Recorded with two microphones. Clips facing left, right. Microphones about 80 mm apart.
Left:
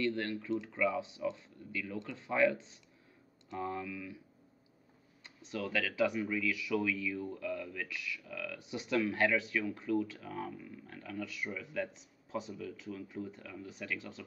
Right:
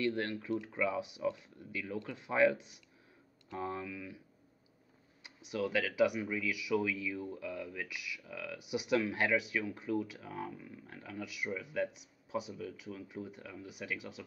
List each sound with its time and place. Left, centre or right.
0.0 s speech: centre
5.2 s speech: centre